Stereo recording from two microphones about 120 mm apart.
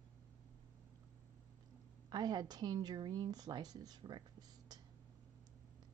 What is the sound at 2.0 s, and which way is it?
Speech, 35° right (ahead or behind).